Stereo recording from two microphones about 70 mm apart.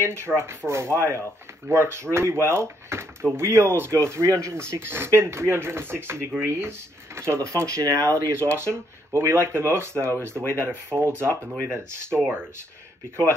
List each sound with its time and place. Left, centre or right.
0.0 s speech: right
7.2 s speech: right